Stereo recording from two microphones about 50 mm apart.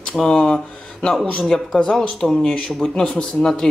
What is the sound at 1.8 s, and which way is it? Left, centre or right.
Speech, left.